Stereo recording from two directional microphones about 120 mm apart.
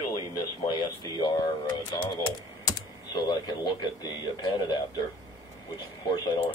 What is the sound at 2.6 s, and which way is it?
Speech, 35° left (ahead or behind).